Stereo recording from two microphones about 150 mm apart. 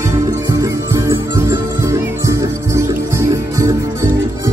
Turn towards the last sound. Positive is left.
turn(degrees=-20)  # may be behind; listen again after turning